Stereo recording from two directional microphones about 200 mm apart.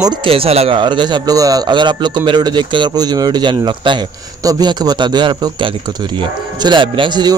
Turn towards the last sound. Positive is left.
turn(degrees=-20)  # may be behind; listen again after turning